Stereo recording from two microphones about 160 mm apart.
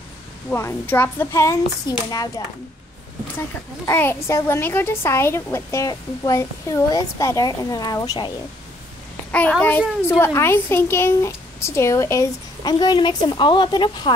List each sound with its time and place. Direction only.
0.5 s a woman's voice: 15° left (ahead or behind)
9.3 s a woman's voice: 10° left (ahead or behind); by 14.1 s 30° left (ahead or behind)